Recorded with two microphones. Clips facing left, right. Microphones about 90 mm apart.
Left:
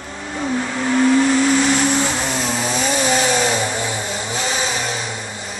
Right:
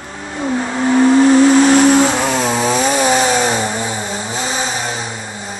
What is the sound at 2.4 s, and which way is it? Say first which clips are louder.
Chainsaw: right 6 dB; 50° right (ahead or behind).